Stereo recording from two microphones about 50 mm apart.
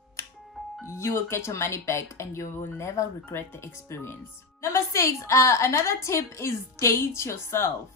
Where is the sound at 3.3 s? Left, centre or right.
Left.